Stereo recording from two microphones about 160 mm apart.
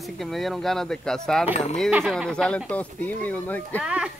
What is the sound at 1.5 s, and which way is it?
Speech, 45° left (ahead or behind).